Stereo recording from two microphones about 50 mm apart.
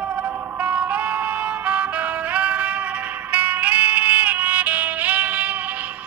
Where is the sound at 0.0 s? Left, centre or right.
Right.